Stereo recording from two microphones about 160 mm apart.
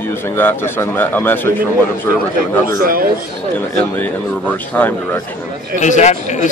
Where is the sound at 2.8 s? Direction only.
65° right (ahead or behind).